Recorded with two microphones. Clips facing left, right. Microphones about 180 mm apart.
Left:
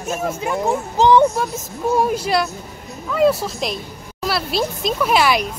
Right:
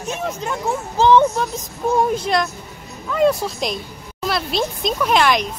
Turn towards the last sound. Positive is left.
turn(degrees=5)  # may be behind; listen again after turning